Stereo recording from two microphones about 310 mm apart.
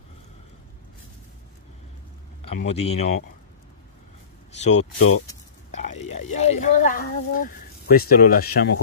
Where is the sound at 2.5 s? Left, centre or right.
Left.